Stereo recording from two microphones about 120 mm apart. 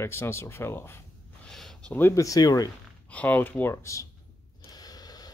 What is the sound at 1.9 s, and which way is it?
Speech, 15° left (ahead or behind).